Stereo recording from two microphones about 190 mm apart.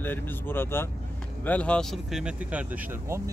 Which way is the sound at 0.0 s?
10° left (ahead or behind).